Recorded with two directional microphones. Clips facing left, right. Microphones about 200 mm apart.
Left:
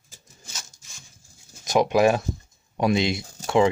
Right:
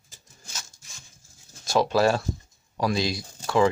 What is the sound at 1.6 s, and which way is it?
Speech, 20° left (ahead or behind).